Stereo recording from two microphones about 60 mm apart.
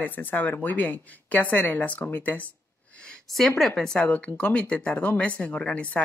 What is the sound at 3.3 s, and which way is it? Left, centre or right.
Speech, centre.